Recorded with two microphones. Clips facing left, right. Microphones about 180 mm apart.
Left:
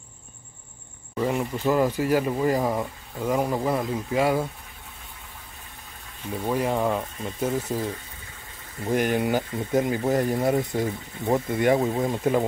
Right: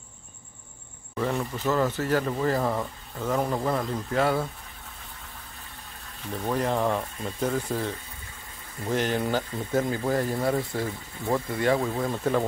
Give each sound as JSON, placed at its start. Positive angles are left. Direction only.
{"t": 1.1, "sound": "speech", "side_deg": 15}
{"t": 6.3, "sound": "speech", "side_deg": 10}